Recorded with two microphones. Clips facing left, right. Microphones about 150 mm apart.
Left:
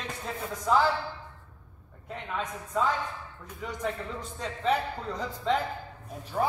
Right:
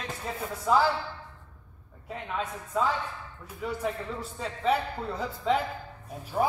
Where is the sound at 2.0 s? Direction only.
5° right (ahead or behind).